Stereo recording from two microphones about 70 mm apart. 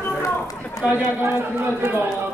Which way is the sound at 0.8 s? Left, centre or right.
Right.